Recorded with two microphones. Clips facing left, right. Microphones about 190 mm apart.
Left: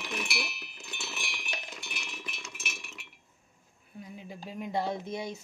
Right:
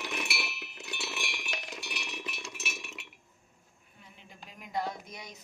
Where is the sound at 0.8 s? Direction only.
15° right (ahead or behind).